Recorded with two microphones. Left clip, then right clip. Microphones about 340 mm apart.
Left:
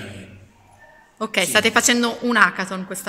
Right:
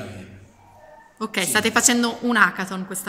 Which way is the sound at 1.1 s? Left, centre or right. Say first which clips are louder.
Left 4 dB; centre.